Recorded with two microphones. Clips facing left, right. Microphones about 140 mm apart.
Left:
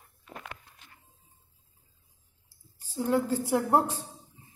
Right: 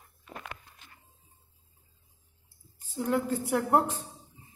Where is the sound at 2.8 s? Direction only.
35° left (ahead or behind).